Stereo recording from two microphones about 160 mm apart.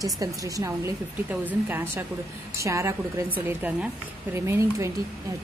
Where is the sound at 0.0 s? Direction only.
20° right (ahead or behind).